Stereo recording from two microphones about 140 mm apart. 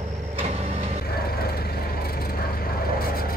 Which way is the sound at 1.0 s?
90° left.